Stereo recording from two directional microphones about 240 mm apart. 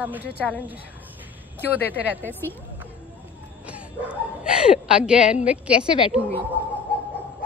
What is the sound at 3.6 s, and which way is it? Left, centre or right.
A woman's voice, centre.